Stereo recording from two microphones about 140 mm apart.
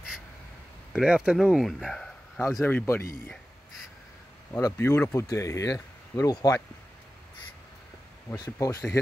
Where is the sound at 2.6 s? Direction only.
15° left (ahead or behind).